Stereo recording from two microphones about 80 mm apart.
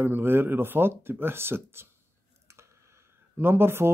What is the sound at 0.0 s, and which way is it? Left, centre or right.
Speech, right.